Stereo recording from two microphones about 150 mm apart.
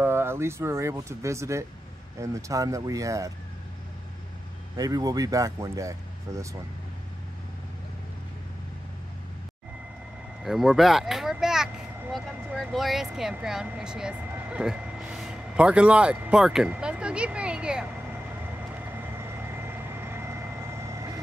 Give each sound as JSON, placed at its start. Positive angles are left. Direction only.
{"t": 0.0, "sound": "speech", "side_deg": -15}
{"t": 4.7, "sound": "speech", "side_deg": -25}
{"t": 10.4, "sound": "speech", "side_deg": 0}
{"t": 19.5, "sound": "vehicle", "side_deg": -15}